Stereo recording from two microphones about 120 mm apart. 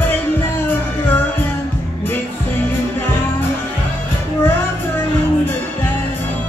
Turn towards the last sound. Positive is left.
turn(degrees=20)  # may be behind; listen again after turning